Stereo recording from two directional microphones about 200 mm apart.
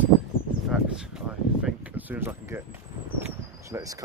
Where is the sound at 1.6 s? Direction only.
10° right (ahead or behind).